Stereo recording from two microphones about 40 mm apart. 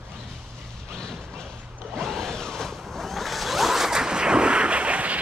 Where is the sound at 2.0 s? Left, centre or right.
Centre.